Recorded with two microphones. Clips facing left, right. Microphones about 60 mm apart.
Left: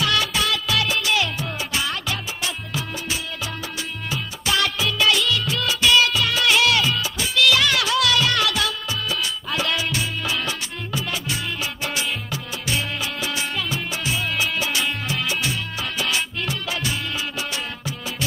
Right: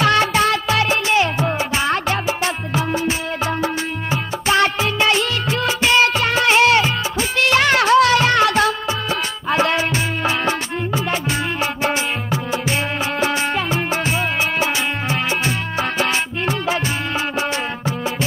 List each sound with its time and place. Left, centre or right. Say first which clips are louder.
0.0 s music: right 7 dB; right